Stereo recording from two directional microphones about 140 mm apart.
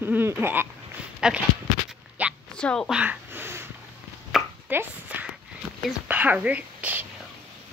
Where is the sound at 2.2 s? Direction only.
10° right (ahead or behind).